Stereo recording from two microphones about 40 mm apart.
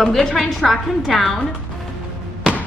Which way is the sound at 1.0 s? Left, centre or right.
Centre.